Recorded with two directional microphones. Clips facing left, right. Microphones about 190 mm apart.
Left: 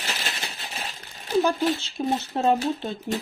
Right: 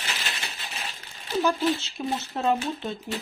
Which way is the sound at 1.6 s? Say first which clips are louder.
Left 1 dB; 45° left (ahead or behind).